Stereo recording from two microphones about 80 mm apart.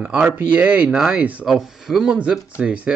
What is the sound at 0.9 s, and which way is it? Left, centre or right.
Speech, centre.